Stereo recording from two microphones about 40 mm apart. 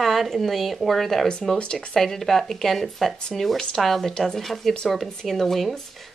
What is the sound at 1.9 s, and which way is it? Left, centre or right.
Speech, centre.